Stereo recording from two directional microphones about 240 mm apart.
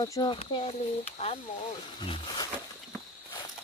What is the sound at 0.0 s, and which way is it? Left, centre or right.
Speech, centre.